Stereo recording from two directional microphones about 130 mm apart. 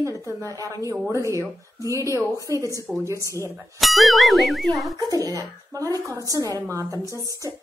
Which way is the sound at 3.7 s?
Centre (ahead or behind).